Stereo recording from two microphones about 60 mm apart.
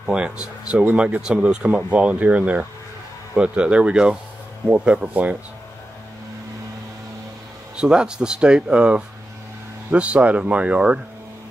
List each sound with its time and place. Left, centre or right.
0.0 s speech: centre
7.7 s speech: centre